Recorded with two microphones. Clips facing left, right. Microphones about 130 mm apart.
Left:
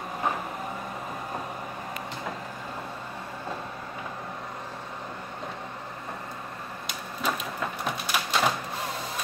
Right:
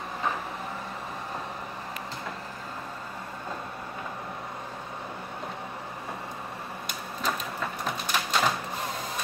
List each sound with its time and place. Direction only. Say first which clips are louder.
7.2 s printer: left 1 dB; 5° left (ahead or behind)